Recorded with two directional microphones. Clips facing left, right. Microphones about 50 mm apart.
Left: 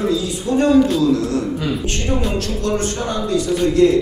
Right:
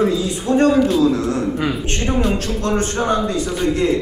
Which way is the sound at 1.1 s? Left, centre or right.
Right.